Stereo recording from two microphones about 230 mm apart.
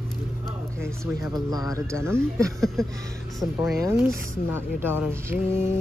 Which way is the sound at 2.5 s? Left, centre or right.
Centre.